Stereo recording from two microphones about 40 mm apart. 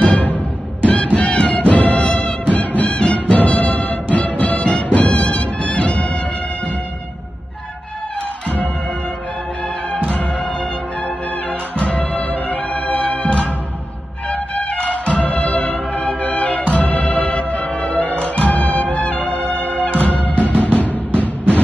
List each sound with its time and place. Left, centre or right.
0.0 s music: left
9.9 s music: left
11.8 s music: left